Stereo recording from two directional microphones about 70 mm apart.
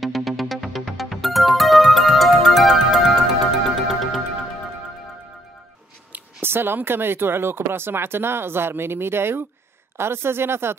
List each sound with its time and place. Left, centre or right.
0.0 s music: centre
6.1 s speech: right